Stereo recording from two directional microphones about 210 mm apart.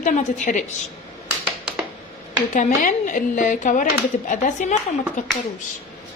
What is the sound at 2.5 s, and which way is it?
A woman's voice, 35° left (ahead or behind).